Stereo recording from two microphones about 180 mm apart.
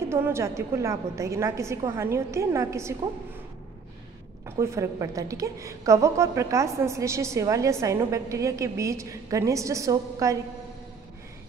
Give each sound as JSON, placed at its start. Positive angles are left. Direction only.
{"t": 0.1, "sound": "a woman's voice", "side_deg": -15}
{"t": 4.5, "sound": "a woman's voice", "side_deg": -15}